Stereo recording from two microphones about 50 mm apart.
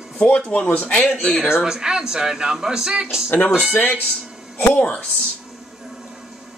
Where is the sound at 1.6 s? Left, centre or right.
Centre.